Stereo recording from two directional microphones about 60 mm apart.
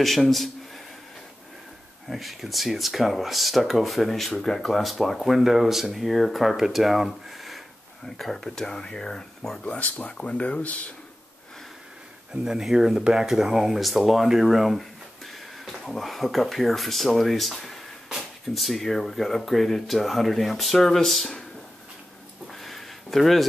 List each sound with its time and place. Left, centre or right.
0.0 s speech: centre
2.0 s speech: centre
9.8 s speech: left
12.4 s speech: centre
22.5 s a sound: centre